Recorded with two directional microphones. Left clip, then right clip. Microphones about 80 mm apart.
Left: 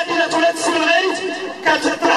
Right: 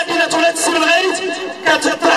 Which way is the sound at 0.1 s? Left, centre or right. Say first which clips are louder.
Right 2 dB; right.